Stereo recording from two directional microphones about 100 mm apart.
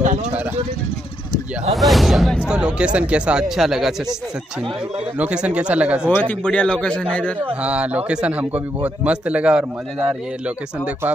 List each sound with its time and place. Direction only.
1.7 s speech: centre (ahead or behind)
5.2 s speech: 10° right (ahead or behind)
6.0 s speech: 15° left (ahead or behind)
7.6 s speech: 10° right (ahead or behind)